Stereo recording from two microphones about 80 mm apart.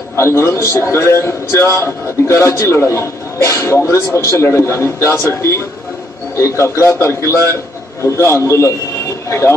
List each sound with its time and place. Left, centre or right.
0.2 s a man's voice: left